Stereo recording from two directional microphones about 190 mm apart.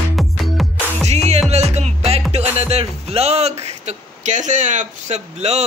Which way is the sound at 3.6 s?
40° right (ahead or behind).